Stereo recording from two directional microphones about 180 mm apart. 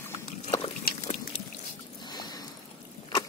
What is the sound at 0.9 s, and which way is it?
Pig, 55° left (ahead or behind).